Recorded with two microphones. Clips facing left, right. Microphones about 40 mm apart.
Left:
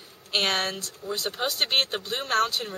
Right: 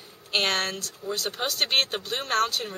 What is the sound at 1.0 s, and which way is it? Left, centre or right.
Speech, right.